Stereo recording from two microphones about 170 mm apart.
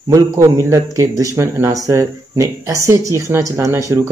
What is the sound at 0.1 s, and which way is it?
Speech, 20° right (ahead or behind).